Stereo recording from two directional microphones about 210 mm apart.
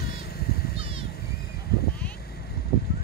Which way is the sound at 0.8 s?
25° right (ahead or behind).